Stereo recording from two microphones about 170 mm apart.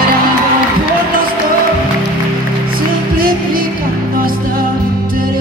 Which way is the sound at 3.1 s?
60° right (ahead or behind).